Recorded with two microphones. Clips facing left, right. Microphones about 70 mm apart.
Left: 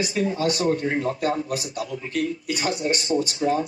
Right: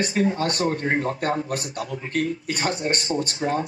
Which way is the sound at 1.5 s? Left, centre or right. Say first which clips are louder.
Even; right.